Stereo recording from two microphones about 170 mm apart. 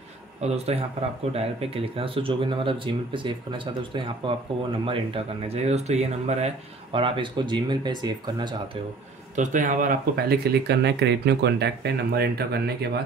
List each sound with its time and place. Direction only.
0.4 s speech: 40° right (ahead or behind)
9.3 s speech: 50° right (ahead or behind); by 13.0 s 70° right (ahead or behind)